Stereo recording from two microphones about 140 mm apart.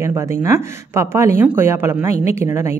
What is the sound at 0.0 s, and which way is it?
A woman's voice, 20° right (ahead or behind).